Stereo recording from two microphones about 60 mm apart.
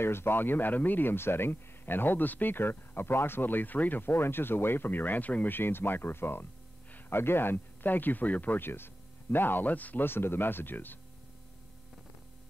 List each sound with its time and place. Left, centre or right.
0.0 s speech: left